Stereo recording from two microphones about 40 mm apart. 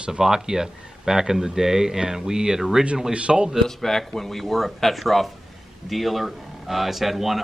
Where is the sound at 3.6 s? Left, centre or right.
Centre.